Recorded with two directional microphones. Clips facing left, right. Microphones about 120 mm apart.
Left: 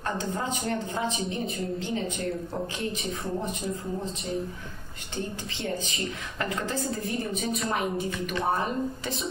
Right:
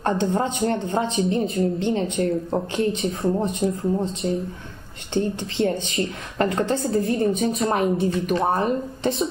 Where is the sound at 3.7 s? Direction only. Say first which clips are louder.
Right 8 dB; centre (ahead or behind).